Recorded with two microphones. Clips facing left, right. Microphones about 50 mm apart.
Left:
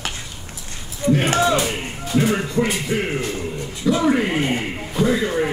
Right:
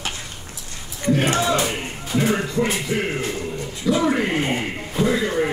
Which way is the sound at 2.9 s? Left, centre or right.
Centre.